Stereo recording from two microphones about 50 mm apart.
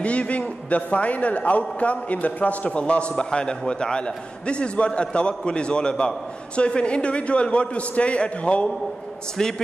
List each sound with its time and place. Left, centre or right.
0.0 s a man's voice: left
9.4 s a man's voice: centre